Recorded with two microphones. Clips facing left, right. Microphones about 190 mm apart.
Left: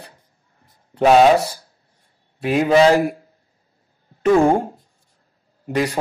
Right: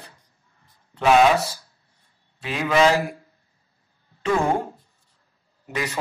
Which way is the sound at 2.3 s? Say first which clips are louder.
Left 7 dB; 45° left (ahead or behind).